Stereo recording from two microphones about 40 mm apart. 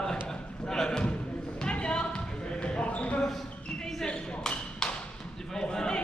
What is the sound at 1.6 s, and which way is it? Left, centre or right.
Basketball bounce, left.